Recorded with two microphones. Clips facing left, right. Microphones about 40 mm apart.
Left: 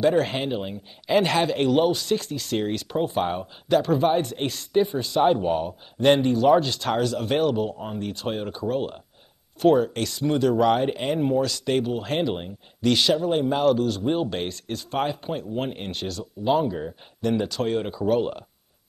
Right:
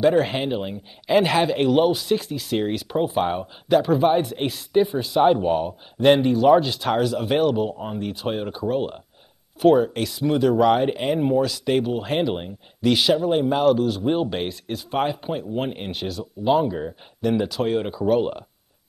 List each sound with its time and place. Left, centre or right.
0.0 s a man's voice: centre